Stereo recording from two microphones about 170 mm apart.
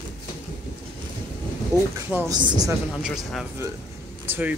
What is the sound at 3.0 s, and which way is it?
Speech, 5° right (ahead or behind).